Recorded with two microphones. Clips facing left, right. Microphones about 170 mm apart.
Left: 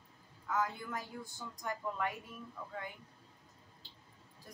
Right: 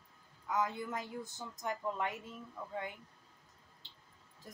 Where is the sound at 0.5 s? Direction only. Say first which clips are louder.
Right 1 dB; 20° right (ahead or behind).